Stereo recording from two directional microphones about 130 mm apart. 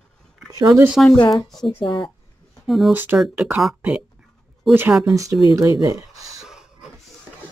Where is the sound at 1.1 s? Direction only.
35° left (ahead or behind).